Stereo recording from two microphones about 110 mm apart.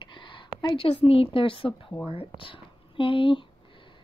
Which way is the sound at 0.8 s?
60° left (ahead or behind).